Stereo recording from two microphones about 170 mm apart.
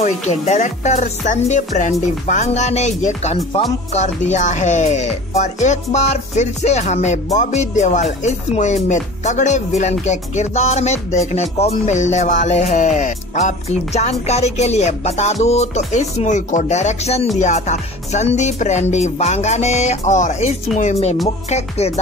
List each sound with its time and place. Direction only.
0.0 s music: 40° left (ahead or behind)
15.4 s speech: 40° left (ahead or behind)
17.4 s music: 45° left (ahead or behind)
21.5 s speech: 40° left (ahead or behind)